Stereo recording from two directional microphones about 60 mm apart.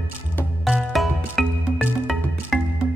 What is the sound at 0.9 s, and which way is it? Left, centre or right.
Music, centre.